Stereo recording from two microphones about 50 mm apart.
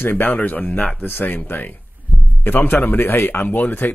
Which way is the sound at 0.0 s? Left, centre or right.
Left.